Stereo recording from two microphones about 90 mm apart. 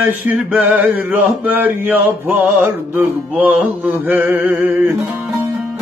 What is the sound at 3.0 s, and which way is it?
Mantra, 15° right (ahead or behind).